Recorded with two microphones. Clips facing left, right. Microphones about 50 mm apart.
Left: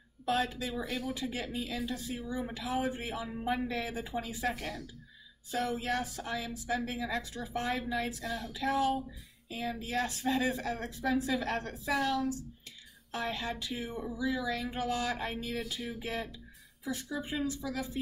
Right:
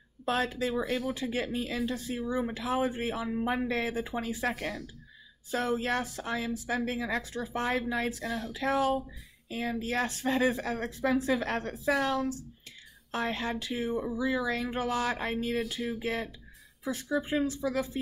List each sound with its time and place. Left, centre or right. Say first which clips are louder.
0.2 s speech: right 2 dB; right